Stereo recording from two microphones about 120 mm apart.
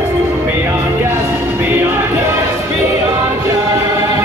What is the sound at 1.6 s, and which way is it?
Music, 15° right (ahead or behind).